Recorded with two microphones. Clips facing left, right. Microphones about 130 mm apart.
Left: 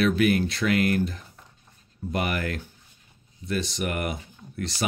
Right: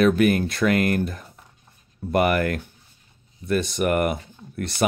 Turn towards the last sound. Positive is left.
turn(degrees=-55)  # may be behind; listen again after turning